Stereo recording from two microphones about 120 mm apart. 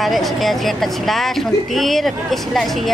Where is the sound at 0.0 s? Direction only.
Centre (ahead or behind).